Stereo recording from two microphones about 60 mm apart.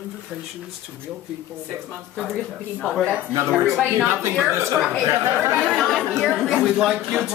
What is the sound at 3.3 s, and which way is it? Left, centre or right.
Speech, right.